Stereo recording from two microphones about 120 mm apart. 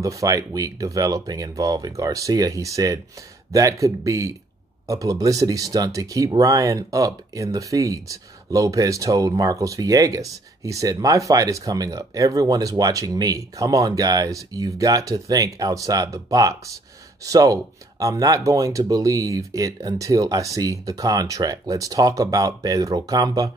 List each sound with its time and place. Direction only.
0.0 s speech: 30° right (ahead or behind)